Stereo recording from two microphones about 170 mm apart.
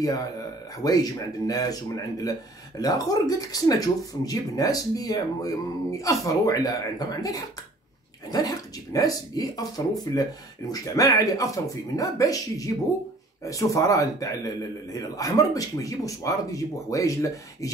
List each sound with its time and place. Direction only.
0.8 s speech: 20° left (ahead or behind)